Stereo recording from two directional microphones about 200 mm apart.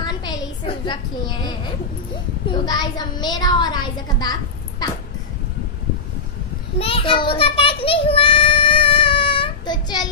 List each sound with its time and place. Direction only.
0.0 s a sound: 20° left (ahead or behind)
2.6 s a woman's voice: 20° left (ahead or behind)
6.8 s child singing: 25° left (ahead or behind)